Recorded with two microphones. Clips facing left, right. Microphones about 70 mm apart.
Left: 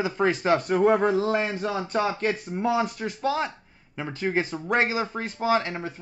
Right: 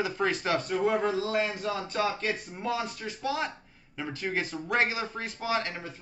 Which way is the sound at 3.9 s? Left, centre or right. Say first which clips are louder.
Left 5 dB; left.